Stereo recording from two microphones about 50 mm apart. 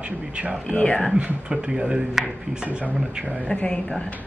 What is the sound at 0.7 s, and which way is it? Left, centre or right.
Speech, left.